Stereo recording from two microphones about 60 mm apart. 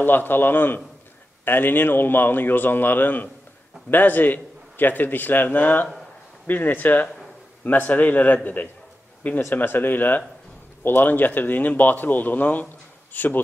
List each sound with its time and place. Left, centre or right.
0.0 s a man's voice: left
9.5 s a man's voice: left